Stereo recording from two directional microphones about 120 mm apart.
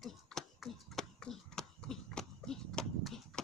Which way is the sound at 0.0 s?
Centre (ahead or behind).